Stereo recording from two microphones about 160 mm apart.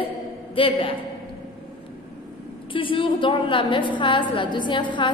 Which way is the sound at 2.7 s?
35° left (ahead or behind).